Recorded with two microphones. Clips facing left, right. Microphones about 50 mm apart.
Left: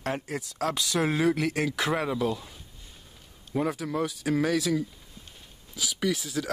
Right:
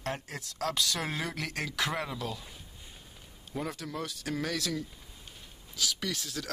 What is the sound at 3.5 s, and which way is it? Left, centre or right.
Speech, centre.